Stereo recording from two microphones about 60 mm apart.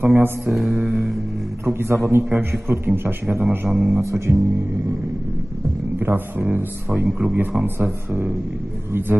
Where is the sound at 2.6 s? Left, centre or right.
Right.